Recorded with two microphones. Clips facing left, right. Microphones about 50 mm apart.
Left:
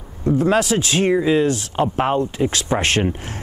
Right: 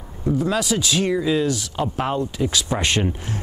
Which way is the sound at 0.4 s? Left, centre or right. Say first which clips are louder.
Left 5 dB; left.